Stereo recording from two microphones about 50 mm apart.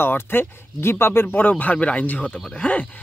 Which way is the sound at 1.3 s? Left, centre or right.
Left.